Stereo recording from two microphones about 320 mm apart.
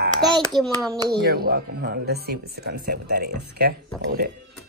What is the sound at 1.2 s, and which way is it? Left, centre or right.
Speech, right.